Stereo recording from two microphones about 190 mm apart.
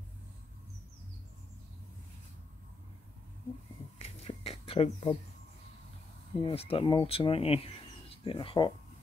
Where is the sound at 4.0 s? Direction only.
30° left (ahead or behind).